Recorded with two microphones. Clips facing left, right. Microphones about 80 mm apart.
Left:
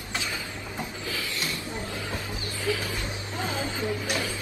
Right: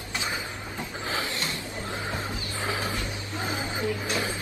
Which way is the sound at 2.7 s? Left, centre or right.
Right.